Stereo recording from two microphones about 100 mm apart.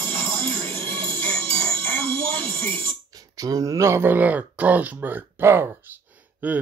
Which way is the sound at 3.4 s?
40° right (ahead or behind).